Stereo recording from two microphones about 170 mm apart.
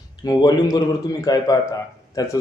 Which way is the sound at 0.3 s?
20° left (ahead or behind).